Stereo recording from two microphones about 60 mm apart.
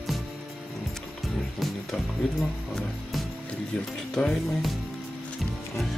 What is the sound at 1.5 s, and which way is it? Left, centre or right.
Music, centre.